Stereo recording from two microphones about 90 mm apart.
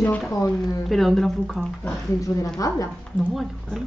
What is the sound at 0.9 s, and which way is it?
Speech, centre (ahead or behind).